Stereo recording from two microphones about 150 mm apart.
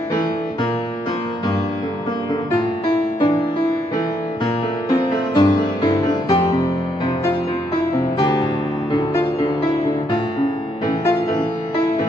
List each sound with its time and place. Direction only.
4.9 s music: 25° left (ahead or behind)
8.2 s music: 30° left (ahead or behind)
11.1 s music: 25° left (ahead or behind)